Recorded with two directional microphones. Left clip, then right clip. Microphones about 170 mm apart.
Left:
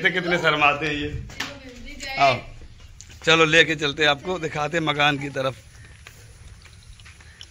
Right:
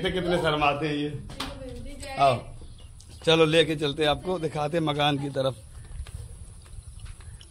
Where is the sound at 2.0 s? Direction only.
Centre (ahead or behind).